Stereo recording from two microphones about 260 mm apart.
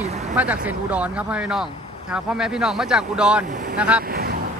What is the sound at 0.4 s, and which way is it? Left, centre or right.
Speech, centre.